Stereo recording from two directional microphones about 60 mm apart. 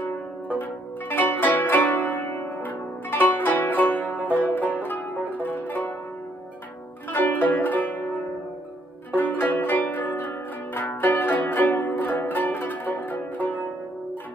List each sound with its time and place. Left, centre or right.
0.6 s zither: left
4.5 s music: left
7.1 s zither: left
9.1 s music: left